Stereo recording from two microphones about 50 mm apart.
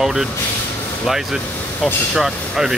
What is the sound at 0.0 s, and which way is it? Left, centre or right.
Speech, centre.